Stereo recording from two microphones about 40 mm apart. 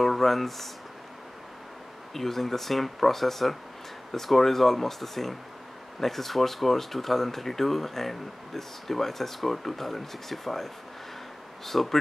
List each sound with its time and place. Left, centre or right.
0.0 s speech: centre
2.1 s speech: centre